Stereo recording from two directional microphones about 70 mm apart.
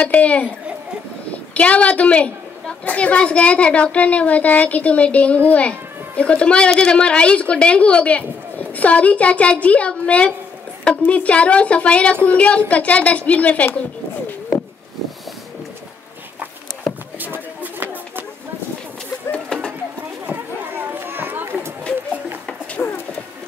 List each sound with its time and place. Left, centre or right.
0.0 s a woman's voice: centre
1.5 s a woman's voice: centre
17.2 s a sound: right
19.3 s a sound: centre
20.2 s run: right
22.8 s bird: left